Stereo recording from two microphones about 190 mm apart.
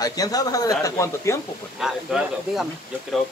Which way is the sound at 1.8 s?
Centre (ahead or behind).